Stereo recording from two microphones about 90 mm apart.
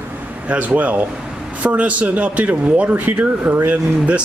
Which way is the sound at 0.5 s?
15° right (ahead or behind).